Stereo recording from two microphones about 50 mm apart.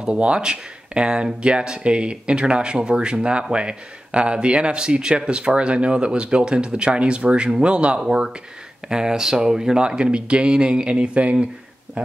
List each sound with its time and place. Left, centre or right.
0.0 s speech: centre